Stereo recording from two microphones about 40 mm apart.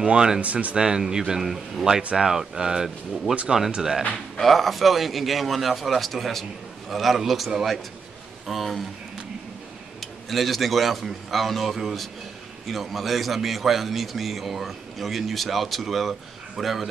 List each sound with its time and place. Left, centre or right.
0.0 s speech: right
0.4 s speech: right
0.7 s a man's voice: centre
4.4 s a man's voice: centre
9.9 s a man's voice: centre